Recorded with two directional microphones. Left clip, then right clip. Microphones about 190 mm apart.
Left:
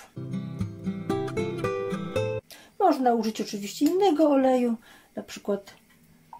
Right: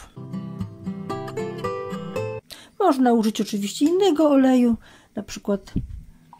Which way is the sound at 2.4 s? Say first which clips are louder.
Right 4 dB; 40° right (ahead or behind).